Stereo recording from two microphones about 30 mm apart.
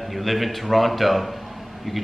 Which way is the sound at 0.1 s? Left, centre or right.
Centre.